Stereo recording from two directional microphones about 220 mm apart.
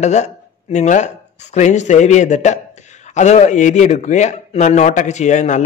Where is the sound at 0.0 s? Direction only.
30° left (ahead or behind).